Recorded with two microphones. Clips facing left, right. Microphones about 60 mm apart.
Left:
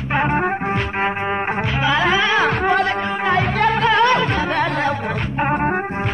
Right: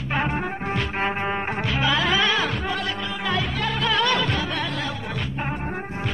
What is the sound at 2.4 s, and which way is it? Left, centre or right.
Music, left.